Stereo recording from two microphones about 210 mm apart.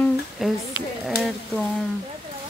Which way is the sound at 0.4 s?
Centre (ahead or behind).